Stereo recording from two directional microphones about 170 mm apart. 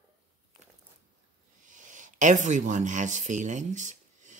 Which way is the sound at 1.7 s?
50° right (ahead or behind).